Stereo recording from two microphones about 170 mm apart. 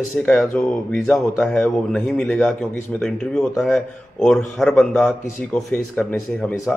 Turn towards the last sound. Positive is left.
turn(degrees=5)  # may be behind; listen again after turning